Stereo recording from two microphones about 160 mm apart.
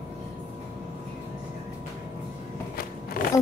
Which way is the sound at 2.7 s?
70° left (ahead or behind).